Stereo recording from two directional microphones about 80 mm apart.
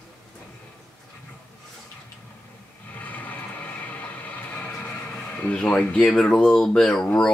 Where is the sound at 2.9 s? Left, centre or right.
Left.